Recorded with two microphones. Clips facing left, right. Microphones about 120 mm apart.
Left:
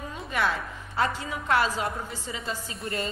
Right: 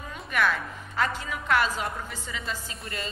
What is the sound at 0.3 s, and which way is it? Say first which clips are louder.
Speech: right 1 dB; 20° left (ahead or behind).